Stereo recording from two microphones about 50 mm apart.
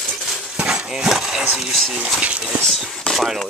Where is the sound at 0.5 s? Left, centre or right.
Centre.